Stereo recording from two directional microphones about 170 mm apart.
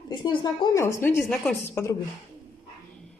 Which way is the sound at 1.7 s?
15° left (ahead or behind).